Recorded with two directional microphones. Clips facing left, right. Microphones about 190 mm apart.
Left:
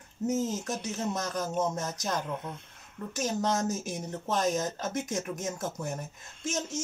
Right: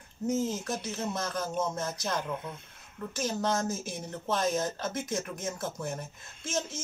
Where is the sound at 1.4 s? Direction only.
40° left (ahead or behind).